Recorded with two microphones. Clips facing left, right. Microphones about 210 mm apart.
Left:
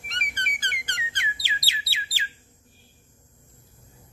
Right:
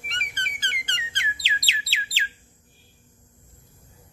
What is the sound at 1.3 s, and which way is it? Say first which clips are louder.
Bird: right 2 dB; 20° right (ahead or behind).